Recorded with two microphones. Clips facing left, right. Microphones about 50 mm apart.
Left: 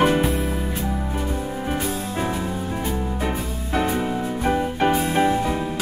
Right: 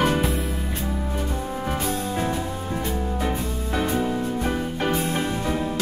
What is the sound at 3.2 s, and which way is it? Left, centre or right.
Music, left.